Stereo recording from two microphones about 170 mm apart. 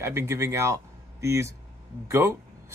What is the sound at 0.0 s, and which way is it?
Speech, 15° right (ahead or behind).